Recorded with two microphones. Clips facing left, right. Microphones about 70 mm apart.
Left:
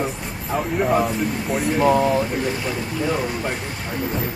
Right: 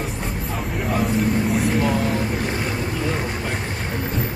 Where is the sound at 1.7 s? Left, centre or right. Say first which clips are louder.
Left 4 dB; left.